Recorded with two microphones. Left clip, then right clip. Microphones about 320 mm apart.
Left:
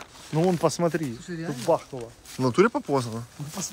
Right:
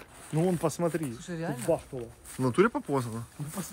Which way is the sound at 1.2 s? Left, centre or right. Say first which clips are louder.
Left 1 dB; centre.